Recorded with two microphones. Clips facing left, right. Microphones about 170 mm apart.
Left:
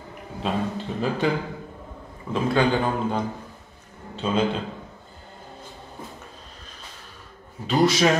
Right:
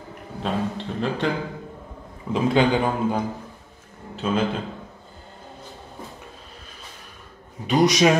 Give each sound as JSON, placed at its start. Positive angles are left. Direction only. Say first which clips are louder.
{"t": 0.4, "sound": "a man's voice", "louder": "even", "side_deg": 5}
{"t": 2.3, "sound": "a man's voice", "louder": "right 2 dB", "side_deg": -15}
{"t": 7.6, "sound": "a man's voice", "louder": "right 2 dB", "side_deg": -20}